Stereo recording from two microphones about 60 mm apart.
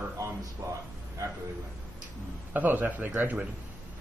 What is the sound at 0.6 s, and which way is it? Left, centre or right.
Speech, right.